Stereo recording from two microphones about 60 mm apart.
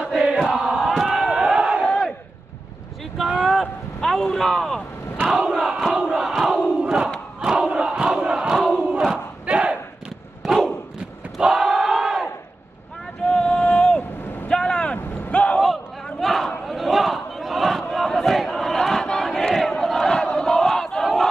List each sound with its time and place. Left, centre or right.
0.2 s crowd: centre
1.9 s battle cry: centre
3.2 s a sound: centre
4.0 s speech: centre
5.5 s crowd: centre
11.3 s battle cry: centre
13.3 s a sound: centre
14.5 s vehicle: centre
15.3 s a sound: centre
15.6 s battle cry: centre